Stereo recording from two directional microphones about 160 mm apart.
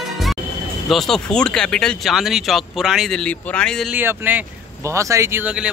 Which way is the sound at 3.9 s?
10° right (ahead or behind).